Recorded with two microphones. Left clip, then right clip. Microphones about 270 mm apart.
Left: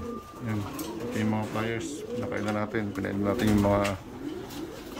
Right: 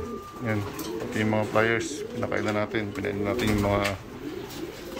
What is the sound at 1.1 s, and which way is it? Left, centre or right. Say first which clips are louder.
Speech: right 8 dB; centre.